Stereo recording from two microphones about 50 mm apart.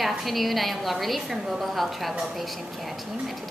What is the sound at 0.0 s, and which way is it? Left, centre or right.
A woman's voice, centre.